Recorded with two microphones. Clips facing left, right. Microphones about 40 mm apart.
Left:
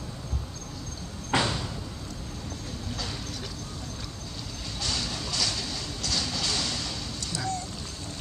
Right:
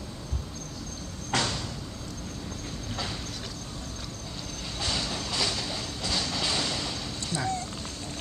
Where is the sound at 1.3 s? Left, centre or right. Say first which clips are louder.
Left 2 dB; centre.